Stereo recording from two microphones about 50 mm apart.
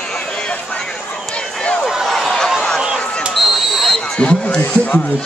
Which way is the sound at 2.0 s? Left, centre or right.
Centre.